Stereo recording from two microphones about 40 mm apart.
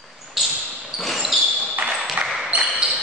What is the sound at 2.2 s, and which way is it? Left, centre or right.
Ping, centre.